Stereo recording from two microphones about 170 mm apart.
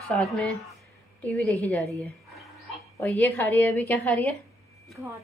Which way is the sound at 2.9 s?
10° left (ahead or behind).